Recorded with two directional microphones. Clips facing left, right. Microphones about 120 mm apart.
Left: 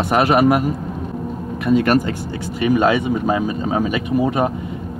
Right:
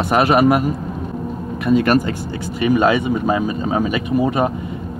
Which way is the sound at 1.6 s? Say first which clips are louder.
Right 1 dB; 15° right (ahead or behind).